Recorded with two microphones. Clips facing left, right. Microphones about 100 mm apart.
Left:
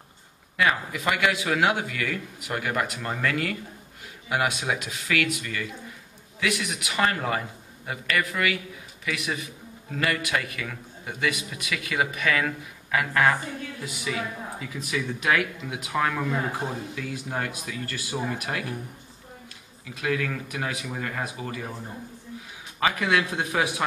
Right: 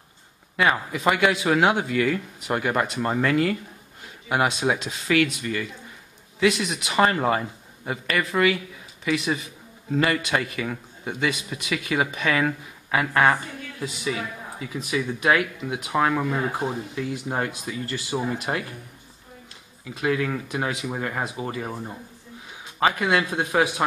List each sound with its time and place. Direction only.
0.6 s a man's voice: 30° right (ahead or behind)
14.1 s a man's voice: 15° right (ahead or behind)
19.9 s a man's voice: 25° right (ahead or behind)
22.8 s a man's voice: 25° right (ahead or behind)